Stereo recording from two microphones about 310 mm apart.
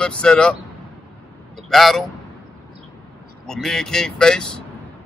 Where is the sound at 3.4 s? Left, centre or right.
Centre.